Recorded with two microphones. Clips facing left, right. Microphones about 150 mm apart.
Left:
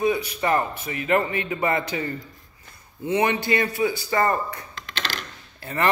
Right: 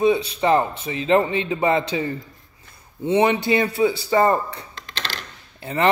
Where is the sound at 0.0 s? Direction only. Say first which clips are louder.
Right 4 dB; 25° right (ahead or behind).